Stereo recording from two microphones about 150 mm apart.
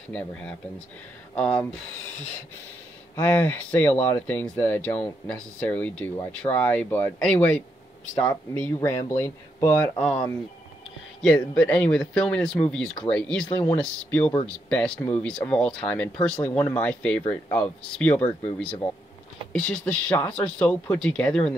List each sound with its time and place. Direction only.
0.1 s speech: 5° left (ahead or behind)
3.2 s speech: 10° left (ahead or behind)
8.5 s speech: 15° left (ahead or behind)
9.9 s speech: 5° left (ahead or behind)
11.2 s speech: 10° left (ahead or behind)